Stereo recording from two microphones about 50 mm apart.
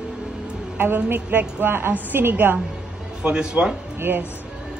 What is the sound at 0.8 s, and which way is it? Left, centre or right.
A woman's voice, right.